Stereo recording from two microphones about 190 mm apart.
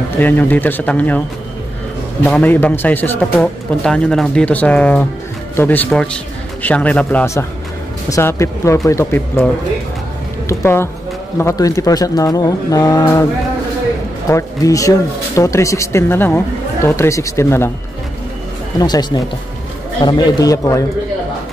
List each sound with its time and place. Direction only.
0.2 s speech: 10° left (ahead or behind)
2.2 s speech: 10° left (ahead or behind)
10.6 s speech: 10° left (ahead or behind)
14.3 s speech: 15° left (ahead or behind)
18.8 s speech: 20° left (ahead or behind)